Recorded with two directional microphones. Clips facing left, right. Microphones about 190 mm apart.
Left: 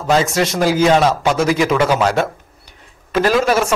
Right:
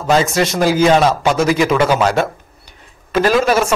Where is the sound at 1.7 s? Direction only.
30° right (ahead or behind).